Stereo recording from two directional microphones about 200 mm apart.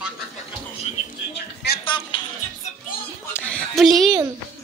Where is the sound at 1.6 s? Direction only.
60° left (ahead or behind).